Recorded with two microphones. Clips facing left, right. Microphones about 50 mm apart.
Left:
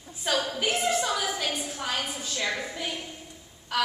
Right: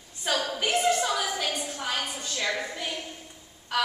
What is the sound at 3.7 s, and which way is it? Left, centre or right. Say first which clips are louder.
Speech: even; centre.